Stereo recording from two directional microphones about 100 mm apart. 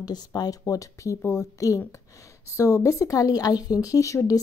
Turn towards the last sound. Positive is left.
turn(degrees=35)  # may be behind; listen again after turning